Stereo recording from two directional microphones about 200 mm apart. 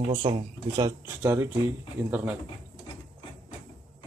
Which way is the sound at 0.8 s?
15° right (ahead or behind).